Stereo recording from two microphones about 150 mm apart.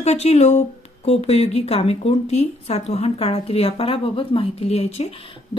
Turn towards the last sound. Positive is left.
turn(degrees=40)  # may be behind; listen again after turning